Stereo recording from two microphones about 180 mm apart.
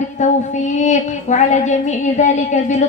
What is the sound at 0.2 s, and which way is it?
Child singing, 40° left (ahead or behind).